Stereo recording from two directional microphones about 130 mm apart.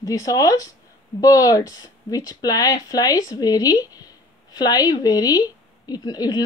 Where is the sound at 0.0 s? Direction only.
25° left (ahead or behind).